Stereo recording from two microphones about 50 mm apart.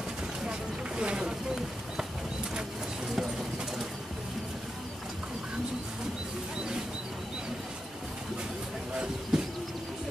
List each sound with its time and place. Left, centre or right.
0.5 s a sound: centre
3.1 s clip-clop: centre
9.3 s train: centre